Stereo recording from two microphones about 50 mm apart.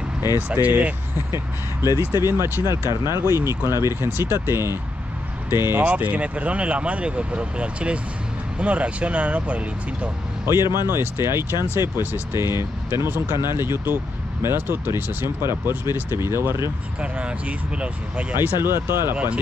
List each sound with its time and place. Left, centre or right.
0.4 s speech: right
1.1 s speech: right
5.9 s speech: right
10.4 s speech: right
17.0 s speech: right
18.3 s speech: right
19.1 s speech: right